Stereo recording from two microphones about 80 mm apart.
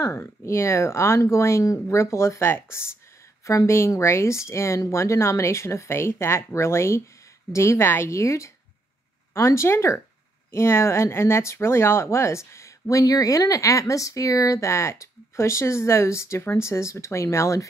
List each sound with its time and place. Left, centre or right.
0.0 s speech: left